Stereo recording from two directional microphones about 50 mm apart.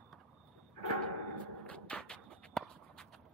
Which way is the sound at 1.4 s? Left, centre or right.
Left.